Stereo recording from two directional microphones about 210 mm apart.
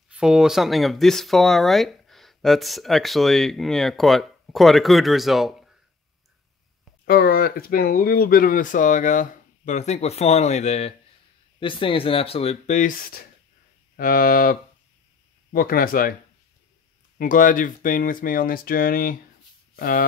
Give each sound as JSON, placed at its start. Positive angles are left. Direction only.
{"t": 0.1, "sound": "speech", "side_deg": -5}
{"t": 7.1, "sound": "speech", "side_deg": 45}
{"t": 17.2, "sound": "speech", "side_deg": 40}